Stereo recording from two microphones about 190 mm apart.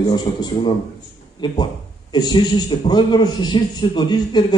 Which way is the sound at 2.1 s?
20° left (ahead or behind).